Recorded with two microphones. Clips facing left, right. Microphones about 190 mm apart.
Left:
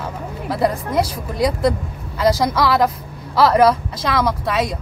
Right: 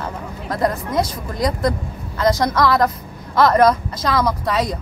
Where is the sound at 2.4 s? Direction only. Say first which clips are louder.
Even; 5° left (ahead or behind).